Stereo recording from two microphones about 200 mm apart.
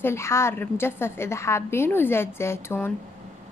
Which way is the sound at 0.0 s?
15° left (ahead or behind).